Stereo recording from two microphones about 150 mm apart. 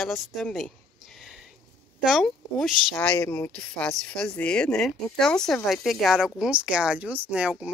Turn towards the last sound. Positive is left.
turn(degrees=-10)  # may be behind; listen again after turning